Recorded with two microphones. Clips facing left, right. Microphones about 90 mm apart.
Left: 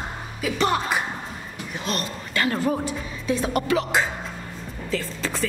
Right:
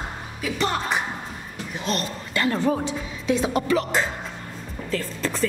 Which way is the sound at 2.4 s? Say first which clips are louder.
Right 1 dB; centre (ahead or behind).